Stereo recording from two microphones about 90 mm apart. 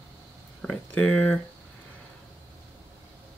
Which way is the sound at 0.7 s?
15° left (ahead or behind).